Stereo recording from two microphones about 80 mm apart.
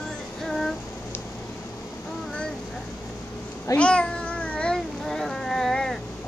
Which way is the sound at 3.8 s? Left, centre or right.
Centre.